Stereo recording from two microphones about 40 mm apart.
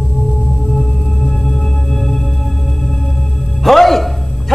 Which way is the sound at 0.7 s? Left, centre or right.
Centre.